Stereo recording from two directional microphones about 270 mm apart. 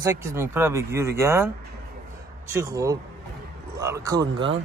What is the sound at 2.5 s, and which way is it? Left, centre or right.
A man's voice, centre.